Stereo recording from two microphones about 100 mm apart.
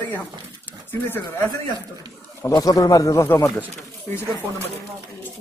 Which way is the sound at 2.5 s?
40° left (ahead or behind).